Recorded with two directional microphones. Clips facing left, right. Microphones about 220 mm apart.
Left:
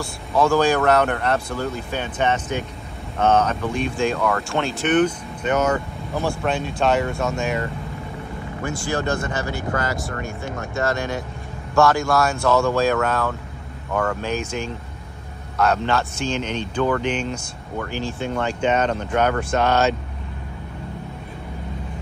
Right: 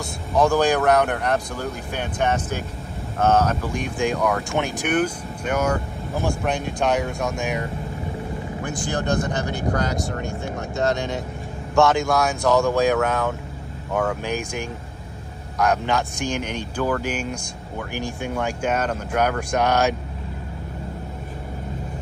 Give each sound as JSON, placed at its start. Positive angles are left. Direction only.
{"t": 0.0, "sound": "speech", "side_deg": -15}
{"t": 8.6, "sound": "speech", "side_deg": -15}
{"t": 10.8, "sound": "speech", "side_deg": -20}